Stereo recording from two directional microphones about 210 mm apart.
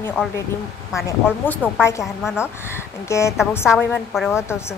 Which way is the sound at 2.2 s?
5° right (ahead or behind).